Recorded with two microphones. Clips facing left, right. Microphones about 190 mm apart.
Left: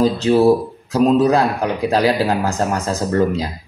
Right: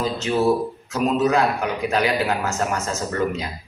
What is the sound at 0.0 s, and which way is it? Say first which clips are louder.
Speech: left 7 dB; 35° left (ahead or behind).